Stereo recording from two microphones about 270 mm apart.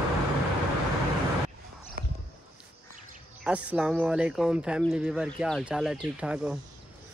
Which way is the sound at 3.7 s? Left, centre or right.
Centre.